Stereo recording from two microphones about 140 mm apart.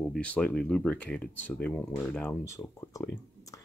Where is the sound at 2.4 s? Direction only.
20° left (ahead or behind).